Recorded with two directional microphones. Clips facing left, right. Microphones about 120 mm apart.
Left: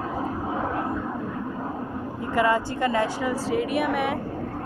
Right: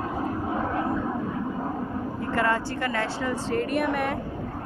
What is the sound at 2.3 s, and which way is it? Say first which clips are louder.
A woman's voice: left 4 dB; 15° left (ahead or behind).